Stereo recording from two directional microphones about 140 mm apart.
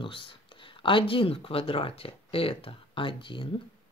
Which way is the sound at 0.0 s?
40° left (ahead or behind).